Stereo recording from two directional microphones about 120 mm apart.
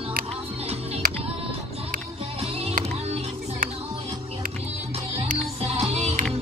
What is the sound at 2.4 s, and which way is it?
Music, 55° right (ahead or behind).